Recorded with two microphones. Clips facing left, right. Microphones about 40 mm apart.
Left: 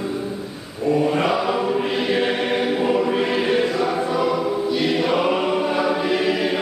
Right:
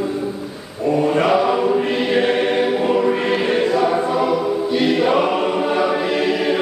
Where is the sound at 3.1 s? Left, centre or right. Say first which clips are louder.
Right 1 dB; right.